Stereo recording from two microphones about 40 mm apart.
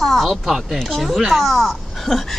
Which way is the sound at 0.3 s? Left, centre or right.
Centre.